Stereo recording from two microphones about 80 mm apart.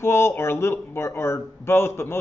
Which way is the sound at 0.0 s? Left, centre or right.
Left.